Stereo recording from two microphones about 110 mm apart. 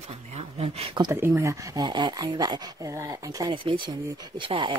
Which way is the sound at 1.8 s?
40° right (ahead or behind).